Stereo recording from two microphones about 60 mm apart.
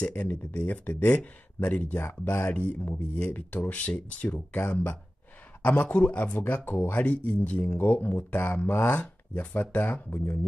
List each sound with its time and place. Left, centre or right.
0.0 s speech: left
10.0 s speech: left